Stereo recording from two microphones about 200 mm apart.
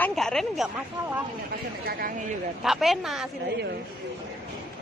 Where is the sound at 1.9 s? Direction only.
45° right (ahead or behind).